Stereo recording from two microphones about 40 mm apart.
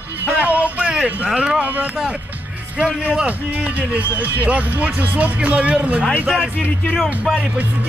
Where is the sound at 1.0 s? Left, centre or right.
Right.